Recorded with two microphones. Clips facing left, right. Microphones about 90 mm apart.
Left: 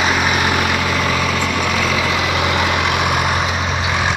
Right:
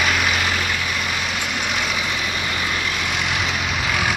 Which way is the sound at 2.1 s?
90° left.